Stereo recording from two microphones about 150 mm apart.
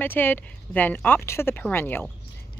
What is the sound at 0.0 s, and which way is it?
Speech, 15° left (ahead or behind).